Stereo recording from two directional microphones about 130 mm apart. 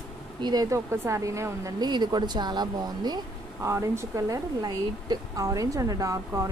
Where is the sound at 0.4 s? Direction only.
30° right (ahead or behind).